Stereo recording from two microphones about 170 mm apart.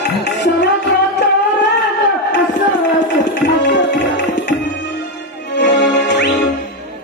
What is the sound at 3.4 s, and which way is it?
Tabla, 90° left.